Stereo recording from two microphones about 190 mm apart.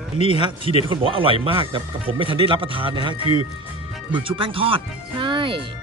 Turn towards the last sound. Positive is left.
turn(degrees=-25)  # may be behind; listen again after turning